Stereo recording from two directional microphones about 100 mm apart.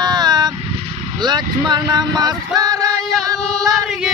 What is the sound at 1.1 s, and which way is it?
Vehicle, 45° right (ahead or behind).